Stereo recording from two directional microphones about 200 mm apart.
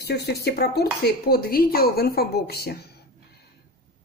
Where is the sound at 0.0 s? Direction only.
55° left (ahead or behind).